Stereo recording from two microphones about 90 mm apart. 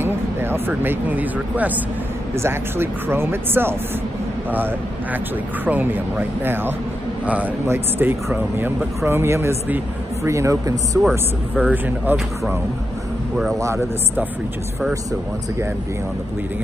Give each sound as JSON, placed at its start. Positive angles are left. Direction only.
{"t": 0.0, "sound": "speech", "side_deg": -25}
{"t": 5.7, "sound": "a man's voice", "side_deg": -20}
{"t": 11.1, "sound": "speech", "side_deg": 0}
{"t": 11.7, "sound": "speech", "side_deg": -20}